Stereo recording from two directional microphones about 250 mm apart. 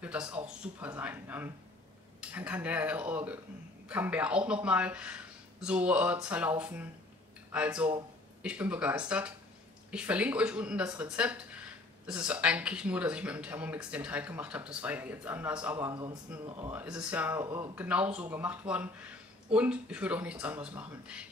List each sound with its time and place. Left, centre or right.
0.0 s speech: centre
16.7 s speech: centre